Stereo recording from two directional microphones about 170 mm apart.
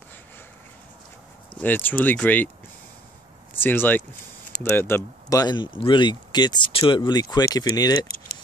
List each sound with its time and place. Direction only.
1.6 s speech: 10° left (ahead or behind)
3.5 s speech: 10° left (ahead or behind)